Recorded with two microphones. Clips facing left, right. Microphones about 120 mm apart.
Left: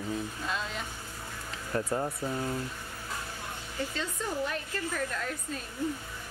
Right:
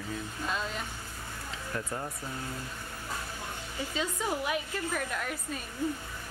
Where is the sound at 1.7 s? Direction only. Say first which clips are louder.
Left 6 dB; 25° left (ahead or behind).